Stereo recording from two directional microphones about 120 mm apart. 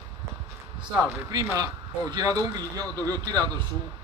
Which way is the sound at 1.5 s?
30° right (ahead or behind).